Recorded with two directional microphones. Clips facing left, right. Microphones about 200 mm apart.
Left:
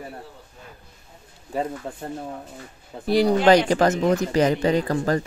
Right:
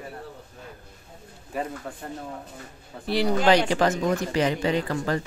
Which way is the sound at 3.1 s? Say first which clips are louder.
Left 4 dB; 45° left (ahead or behind).